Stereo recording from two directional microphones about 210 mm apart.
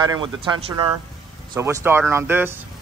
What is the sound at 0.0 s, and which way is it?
Speech, 20° right (ahead or behind).